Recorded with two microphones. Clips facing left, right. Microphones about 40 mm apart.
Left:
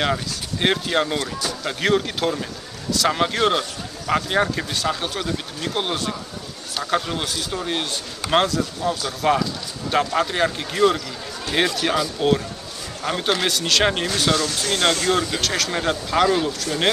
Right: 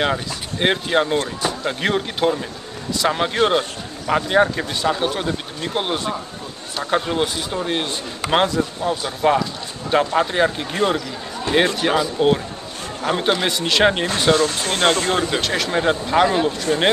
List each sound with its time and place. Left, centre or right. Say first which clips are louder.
0.0 s speech: right 2 dB; centre
1.1 s speech: right 4 dB; right
1.7 s a man's voice: left 4 dB; centre
3.3 s speech: right 2 dB; centre
4.1 s speech: right 4 dB; centre; by 9.1 s right
9.9 s speech: right 3 dB; centre
10.7 s speech: left 1 dB; right
14.0 s speech: right 4 dB; right
15.4 s speech: right 3 dB; centre
16.4 s speech: right 3 dB; right